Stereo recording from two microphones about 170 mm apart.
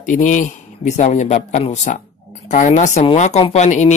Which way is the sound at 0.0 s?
50° left (ahead or behind).